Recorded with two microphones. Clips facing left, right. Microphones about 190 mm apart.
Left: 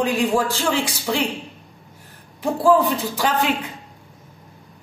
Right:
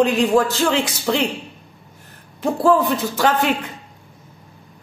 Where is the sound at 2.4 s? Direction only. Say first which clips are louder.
Even; 10° left (ahead or behind).